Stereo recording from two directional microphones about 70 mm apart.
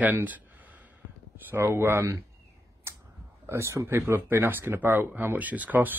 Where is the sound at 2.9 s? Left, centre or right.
Right.